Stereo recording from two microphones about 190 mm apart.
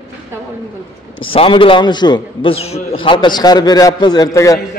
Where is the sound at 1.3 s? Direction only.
30° left (ahead or behind).